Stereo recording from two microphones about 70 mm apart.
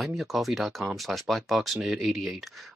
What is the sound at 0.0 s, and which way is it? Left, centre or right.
Speech, centre.